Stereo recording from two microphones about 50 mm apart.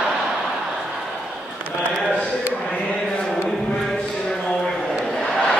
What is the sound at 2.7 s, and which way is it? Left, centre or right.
Chant, left.